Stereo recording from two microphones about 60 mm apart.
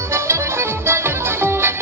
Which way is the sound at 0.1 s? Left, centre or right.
Right.